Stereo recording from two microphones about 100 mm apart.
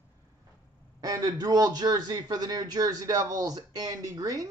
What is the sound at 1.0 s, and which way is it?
A man's voice, 40° right (ahead or behind).